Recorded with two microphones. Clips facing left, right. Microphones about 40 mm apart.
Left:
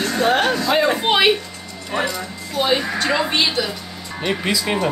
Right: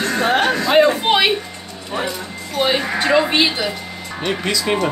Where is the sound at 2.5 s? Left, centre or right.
Centre.